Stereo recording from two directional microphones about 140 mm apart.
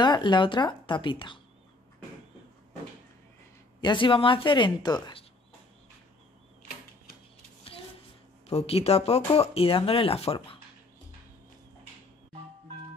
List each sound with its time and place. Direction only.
0.0 s a woman's voice: 30° left (ahead or behind)
3.8 s a woman's voice: 35° left (ahead or behind)
8.5 s speech: 45° left (ahead or behind)